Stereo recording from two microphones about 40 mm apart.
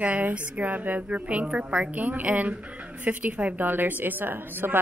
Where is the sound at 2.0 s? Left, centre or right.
Right.